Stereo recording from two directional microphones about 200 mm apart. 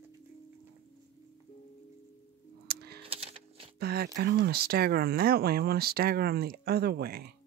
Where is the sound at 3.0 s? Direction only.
30° right (ahead or behind).